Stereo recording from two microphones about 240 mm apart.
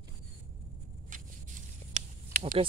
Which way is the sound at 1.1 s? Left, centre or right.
Right.